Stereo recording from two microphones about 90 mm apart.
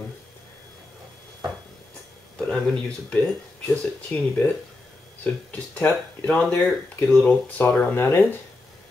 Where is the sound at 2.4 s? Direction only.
10° left (ahead or behind).